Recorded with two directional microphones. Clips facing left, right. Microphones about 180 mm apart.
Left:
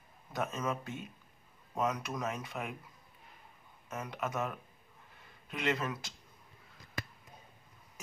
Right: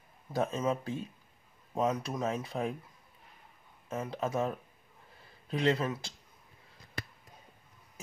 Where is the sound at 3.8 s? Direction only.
30° right (ahead or behind).